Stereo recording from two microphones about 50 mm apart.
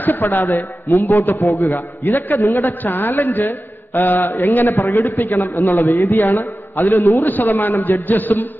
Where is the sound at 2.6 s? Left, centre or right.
Left.